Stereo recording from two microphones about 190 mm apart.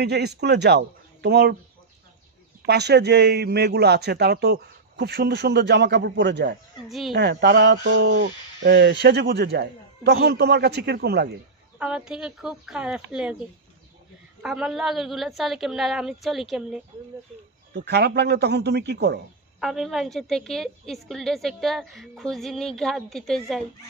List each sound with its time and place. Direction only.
0.0 s a man's voice: 60° right (ahead or behind)
2.6 s a man's voice: 60° right (ahead or behind)
11.8 s a woman's voice: 5° right (ahead or behind)
17.7 s a man's voice: 60° right (ahead or behind)
19.6 s a woman's voice: centre (ahead or behind)